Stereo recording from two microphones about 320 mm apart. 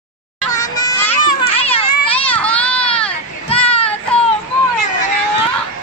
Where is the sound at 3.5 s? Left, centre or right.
Centre.